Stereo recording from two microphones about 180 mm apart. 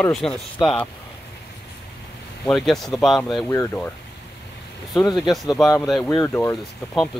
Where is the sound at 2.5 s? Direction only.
Centre (ahead or behind).